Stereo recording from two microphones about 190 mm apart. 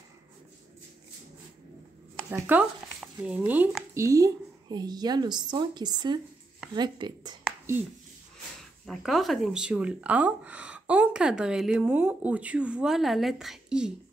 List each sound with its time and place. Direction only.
2.3 s speech: 10° right (ahead or behind)
8.8 s speech: centre (ahead or behind)